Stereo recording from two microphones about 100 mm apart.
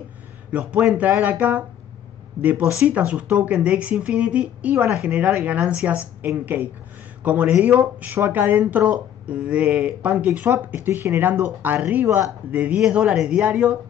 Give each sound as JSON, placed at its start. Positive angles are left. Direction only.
{"t": 0.5, "sound": "a woman's voice", "side_deg": -15}